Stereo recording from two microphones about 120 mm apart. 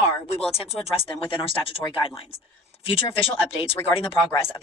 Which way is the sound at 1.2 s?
45° left (ahead or behind).